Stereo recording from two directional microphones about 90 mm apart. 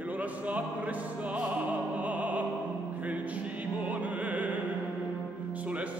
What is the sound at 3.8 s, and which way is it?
Music, 15° right (ahead or behind).